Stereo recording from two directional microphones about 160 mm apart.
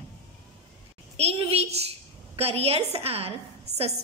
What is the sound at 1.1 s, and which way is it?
A woman's voice, 40° right (ahead or behind).